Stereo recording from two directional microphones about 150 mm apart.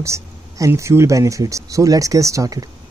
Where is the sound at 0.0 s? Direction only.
20° right (ahead or behind).